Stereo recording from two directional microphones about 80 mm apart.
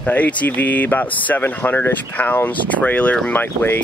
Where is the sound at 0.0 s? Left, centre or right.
Centre.